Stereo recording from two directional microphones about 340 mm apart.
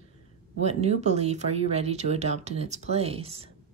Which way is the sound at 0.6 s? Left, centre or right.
Centre.